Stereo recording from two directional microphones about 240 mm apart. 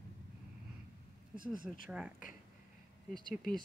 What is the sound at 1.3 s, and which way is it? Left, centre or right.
Speech, right.